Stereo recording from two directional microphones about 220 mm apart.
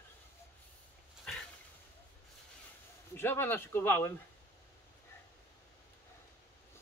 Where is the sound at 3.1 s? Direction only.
10° left (ahead or behind).